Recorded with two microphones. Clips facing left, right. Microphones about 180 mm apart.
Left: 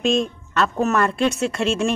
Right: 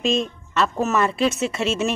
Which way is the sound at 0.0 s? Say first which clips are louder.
Left 2 dB; centre (ahead or behind).